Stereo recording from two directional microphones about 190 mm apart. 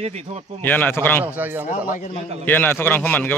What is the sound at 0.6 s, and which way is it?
Speech, 10° left (ahead or behind).